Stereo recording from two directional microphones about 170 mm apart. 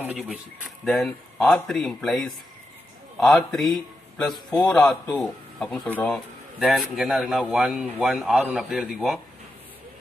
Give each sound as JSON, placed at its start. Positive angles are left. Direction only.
{"t": 0.8, "sound": "a man's voice", "side_deg": 0}
{"t": 5.2, "sound": "a man's voice", "side_deg": 0}
{"t": 6.6, "sound": "a man's voice", "side_deg": 0}